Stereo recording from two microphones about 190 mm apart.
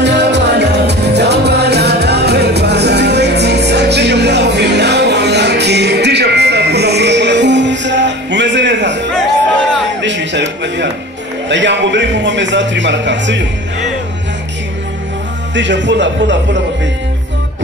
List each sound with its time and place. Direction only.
0.0 s music: 65° right (ahead or behind)
10.0 s music: 70° right (ahead or behind)
11.4 s a sound: 70° right (ahead or behind)
15.5 s speech: 70° right (ahead or behind)